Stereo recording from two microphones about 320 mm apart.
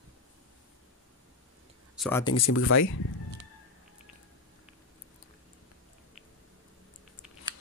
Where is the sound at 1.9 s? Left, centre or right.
Centre.